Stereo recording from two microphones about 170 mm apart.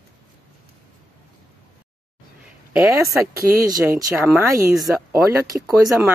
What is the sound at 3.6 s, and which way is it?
Speech, 20° right (ahead or behind).